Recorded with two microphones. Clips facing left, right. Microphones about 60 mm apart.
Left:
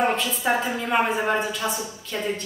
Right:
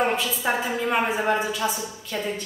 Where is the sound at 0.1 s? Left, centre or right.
Centre.